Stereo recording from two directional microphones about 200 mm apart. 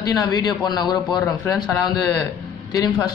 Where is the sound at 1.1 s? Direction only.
Centre (ahead or behind).